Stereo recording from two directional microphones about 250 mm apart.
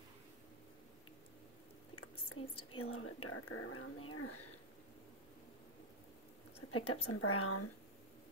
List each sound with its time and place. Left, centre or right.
2.4 s speech: left
6.7 s speech: left